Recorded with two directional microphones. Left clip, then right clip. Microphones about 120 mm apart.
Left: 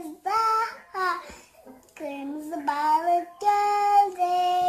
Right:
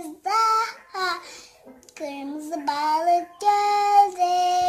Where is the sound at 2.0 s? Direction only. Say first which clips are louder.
Right 2 dB; 5° right (ahead or behind).